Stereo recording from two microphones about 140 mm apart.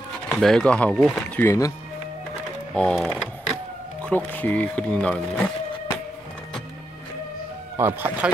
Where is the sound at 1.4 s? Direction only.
20° left (ahead or behind).